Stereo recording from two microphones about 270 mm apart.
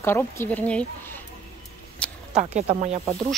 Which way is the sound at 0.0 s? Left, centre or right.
Centre.